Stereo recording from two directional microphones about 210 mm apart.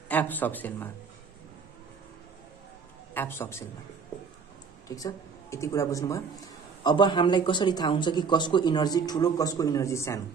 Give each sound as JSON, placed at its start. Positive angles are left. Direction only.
{"t": 0.1, "sound": "speech", "side_deg": 10}
{"t": 3.2, "sound": "speech", "side_deg": 10}
{"t": 4.8, "sound": "speech", "side_deg": 15}